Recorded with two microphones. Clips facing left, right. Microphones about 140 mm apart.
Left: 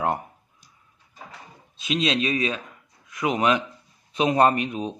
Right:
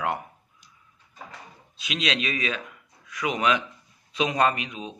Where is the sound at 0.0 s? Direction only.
40° left (ahead or behind).